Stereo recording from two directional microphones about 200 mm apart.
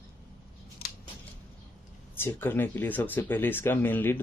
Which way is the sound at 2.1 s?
10° left (ahead or behind).